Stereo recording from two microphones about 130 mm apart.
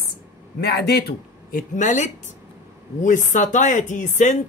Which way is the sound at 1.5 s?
75° left (ahead or behind).